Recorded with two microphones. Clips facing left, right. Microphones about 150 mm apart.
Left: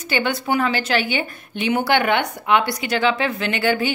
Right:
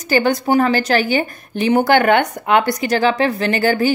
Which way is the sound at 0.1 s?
40° right (ahead or behind).